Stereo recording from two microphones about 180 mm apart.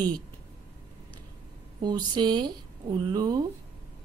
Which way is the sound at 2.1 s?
25° right (ahead or behind).